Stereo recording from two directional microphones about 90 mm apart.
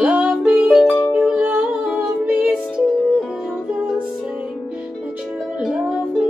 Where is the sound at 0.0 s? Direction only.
10° right (ahead or behind).